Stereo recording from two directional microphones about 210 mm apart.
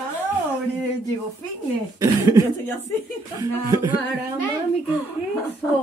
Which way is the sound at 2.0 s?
15° right (ahead or behind).